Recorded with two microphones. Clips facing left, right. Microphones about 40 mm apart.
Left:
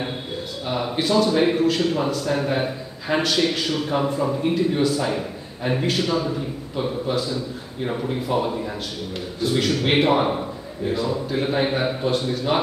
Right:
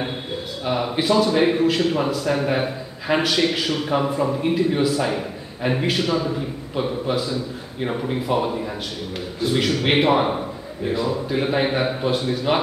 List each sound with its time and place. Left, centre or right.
0.7 s speech: centre